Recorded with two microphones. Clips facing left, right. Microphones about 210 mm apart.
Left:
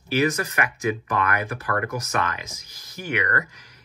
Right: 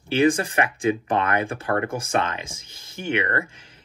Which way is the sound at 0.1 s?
25° right (ahead or behind).